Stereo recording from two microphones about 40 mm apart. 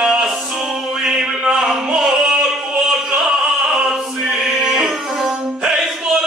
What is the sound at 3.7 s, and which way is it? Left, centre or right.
Opera, right.